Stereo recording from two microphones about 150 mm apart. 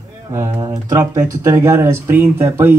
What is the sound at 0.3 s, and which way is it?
Speech, 20° right (ahead or behind).